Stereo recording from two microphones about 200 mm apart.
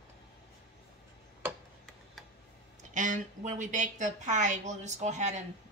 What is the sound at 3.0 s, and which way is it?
A woman's voice, 40° right (ahead or behind).